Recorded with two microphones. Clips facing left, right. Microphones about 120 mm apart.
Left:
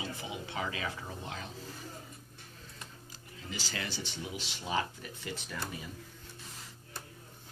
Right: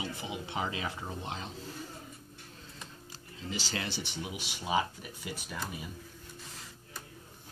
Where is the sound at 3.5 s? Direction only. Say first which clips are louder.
Right 2 dB; 25° right (ahead or behind).